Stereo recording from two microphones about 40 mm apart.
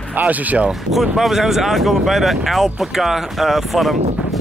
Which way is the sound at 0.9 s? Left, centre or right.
Centre.